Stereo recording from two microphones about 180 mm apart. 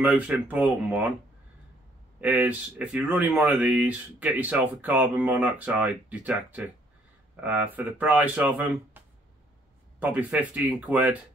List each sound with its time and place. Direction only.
0.0 s speech: 10° right (ahead or behind)
2.1 s speech: 10° right (ahead or behind)